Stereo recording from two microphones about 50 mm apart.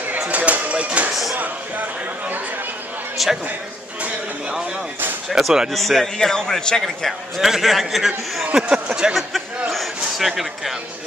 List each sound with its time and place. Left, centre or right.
0.2 s a sound: right
3.2 s a man's voice: centre
5.4 s speech: centre
5.7 s a man's voice: centre
6.1 s a man's voice: centre
7.1 s a man's voice: centre
8.5 s speech: centre
9.1 s a man's voice: centre